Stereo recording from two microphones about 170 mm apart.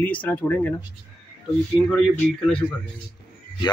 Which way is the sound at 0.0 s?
10° left (ahead or behind).